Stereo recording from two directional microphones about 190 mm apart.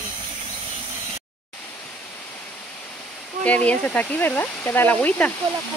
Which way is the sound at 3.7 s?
10° left (ahead or behind).